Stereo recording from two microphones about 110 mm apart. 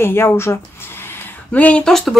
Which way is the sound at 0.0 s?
20° left (ahead or behind).